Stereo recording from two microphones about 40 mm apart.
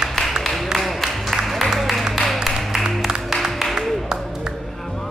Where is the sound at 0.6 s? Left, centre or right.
Centre.